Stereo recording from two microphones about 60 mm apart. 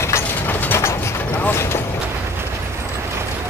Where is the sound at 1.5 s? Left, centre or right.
Left.